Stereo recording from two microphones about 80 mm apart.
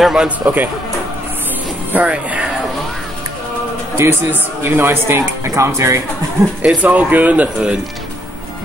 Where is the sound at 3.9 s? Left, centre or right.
Right.